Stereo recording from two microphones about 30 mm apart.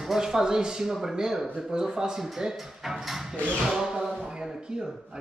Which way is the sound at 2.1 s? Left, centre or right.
Centre.